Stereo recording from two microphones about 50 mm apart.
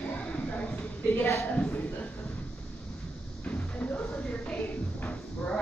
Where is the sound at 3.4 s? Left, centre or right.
Left.